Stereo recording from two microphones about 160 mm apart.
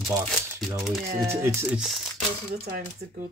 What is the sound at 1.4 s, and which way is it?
Speech, 15° right (ahead or behind).